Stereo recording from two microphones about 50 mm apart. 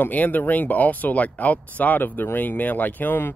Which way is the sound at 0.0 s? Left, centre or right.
Left.